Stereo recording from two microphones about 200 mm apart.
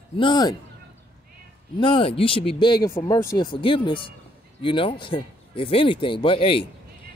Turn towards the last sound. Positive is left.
turn(degrees=25)  # may be behind; listen again after turning